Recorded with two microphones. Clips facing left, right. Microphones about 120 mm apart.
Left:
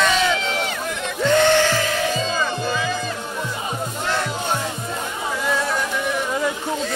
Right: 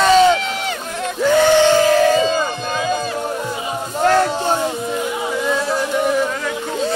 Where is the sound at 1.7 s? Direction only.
30° right (ahead or behind).